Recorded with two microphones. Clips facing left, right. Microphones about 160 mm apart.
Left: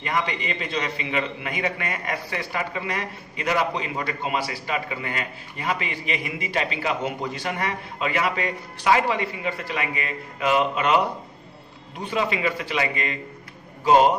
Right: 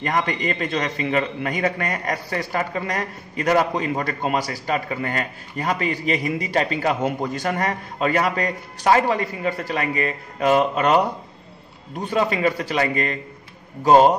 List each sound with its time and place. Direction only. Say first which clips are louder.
0.0 s a man's voice: right 4 dB; 45° right (ahead or behind)
12.1 s a man's voice: right 4 dB; 45° right (ahead or behind)